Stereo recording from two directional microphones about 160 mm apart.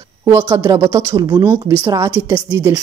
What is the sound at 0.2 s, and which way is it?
A woman's voice, 15° right (ahead or behind).